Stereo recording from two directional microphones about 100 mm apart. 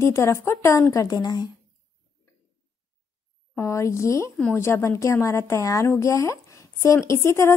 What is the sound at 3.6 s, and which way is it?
A woman's voice, 30° left (ahead or behind).